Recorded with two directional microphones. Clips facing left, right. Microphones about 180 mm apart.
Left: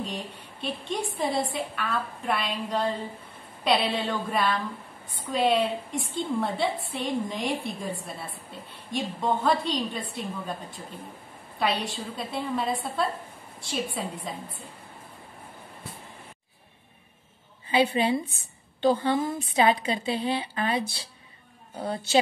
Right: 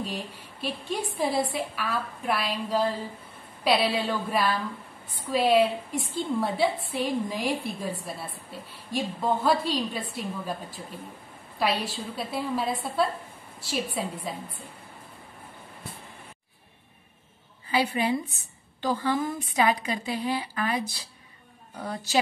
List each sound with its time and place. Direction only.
0.0 s a woman's voice: 5° right (ahead or behind)
8.9 s a woman's voice: 5° right (ahead or behind)
11.6 s a woman's voice: 5° right (ahead or behind)
14.3 s a woman's voice: 5° right (ahead or behind)
17.6 s a woman's voice: 25° left (ahead or behind)